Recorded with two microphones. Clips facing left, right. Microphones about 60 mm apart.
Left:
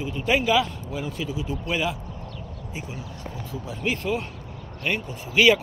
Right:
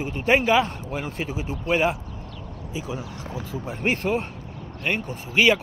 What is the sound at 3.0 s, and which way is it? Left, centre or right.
Speech, right.